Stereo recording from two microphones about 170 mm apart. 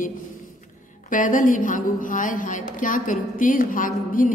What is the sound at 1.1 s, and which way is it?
A woman's voice, 50° left (ahead or behind).